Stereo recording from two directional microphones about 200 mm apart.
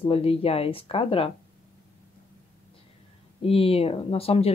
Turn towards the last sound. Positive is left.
turn(degrees=30)  # may be behind; listen again after turning